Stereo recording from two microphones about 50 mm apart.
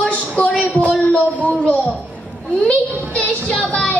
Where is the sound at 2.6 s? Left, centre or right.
Left.